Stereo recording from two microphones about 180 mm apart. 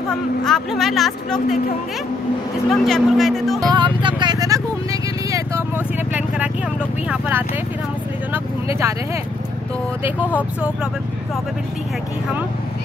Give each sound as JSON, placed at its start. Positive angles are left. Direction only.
{"t": 0.5, "sound": "speech", "side_deg": 0}
{"t": 2.7, "sound": "speech", "side_deg": 0}
{"t": 3.7, "sound": "speech", "side_deg": -25}
{"t": 6.1, "sound": "vehicle", "side_deg": -10}
{"t": 7.1, "sound": "speech", "side_deg": -10}